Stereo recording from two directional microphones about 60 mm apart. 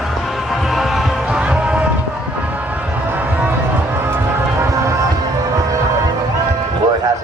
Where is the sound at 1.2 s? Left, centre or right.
Centre.